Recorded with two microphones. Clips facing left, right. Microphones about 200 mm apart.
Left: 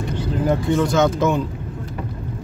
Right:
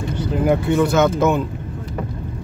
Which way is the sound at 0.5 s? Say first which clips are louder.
Right 2 dB; 10° right (ahead or behind).